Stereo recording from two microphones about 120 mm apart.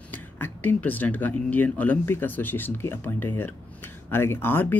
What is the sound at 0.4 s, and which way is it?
Speech, 15° left (ahead or behind).